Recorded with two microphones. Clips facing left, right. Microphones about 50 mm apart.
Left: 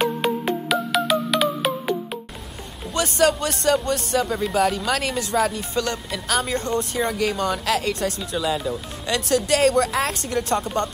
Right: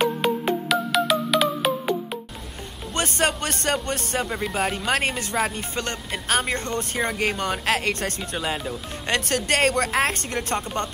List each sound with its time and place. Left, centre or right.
0.0 s music: centre
2.9 s speech: right
10.6 s speech: right